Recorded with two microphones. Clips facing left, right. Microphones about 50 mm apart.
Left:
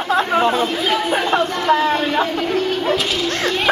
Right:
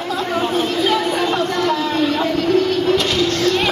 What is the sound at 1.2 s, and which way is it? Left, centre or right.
Chatter, centre.